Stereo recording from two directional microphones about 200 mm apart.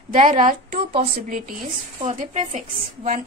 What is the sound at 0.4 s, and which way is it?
Speech, 45° right (ahead or behind).